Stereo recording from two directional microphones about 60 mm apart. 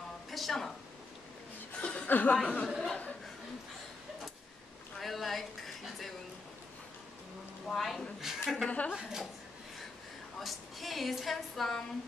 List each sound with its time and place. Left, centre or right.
0.3 s a sound: centre
1.8 s chuckle: left
2.0 s speech: left
2.3 s speech: centre
4.9 s speech: centre
7.6 s a woman's voice: centre
8.6 s speech: left
8.9 s a woman's voice: centre
10.4 s a woman's voice: centre